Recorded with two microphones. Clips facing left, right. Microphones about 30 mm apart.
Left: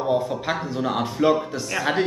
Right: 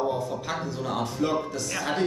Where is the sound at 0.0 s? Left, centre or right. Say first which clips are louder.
Left 5 dB; left.